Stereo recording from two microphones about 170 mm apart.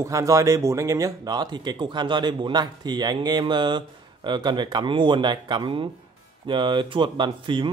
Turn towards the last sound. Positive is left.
turn(degrees=-30)  # may be behind; listen again after turning